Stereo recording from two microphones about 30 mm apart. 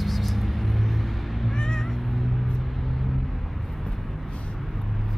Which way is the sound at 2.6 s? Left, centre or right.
Centre.